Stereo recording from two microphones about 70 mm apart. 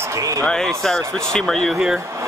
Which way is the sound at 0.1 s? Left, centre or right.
Right.